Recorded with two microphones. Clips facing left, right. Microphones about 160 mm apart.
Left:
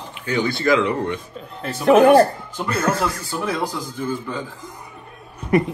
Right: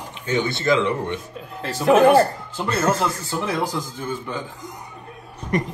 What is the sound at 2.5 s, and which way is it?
A man's voice, 30° right (ahead or behind).